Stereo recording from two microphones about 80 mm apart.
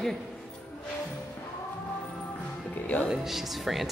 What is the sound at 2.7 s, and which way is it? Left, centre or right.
Music, centre.